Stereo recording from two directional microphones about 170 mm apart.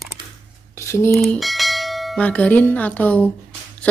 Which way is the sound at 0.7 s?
15° left (ahead or behind).